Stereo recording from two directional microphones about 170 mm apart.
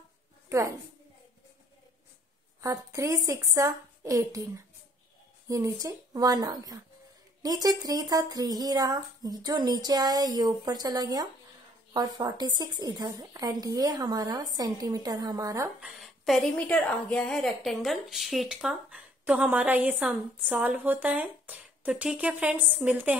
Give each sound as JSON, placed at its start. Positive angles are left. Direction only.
{"t": 0.5, "sound": "a woman's voice", "side_deg": -20}
{"t": 2.6, "sound": "a woman's voice", "side_deg": -20}
{"t": 5.5, "sound": "speech", "side_deg": -20}
{"t": 15.8, "sound": "a woman's voice", "side_deg": 0}